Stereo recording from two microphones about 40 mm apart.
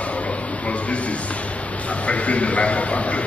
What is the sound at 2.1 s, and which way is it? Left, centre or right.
A man's voice, left.